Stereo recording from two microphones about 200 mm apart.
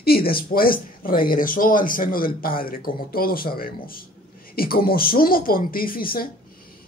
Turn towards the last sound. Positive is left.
turn(degrees=45)  # may be behind; listen again after turning